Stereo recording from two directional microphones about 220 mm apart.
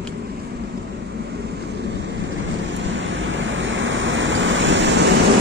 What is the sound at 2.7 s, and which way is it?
Waves, 55° right (ahead or behind).